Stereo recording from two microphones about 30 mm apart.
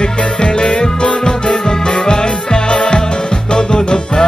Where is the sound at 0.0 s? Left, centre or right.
Left.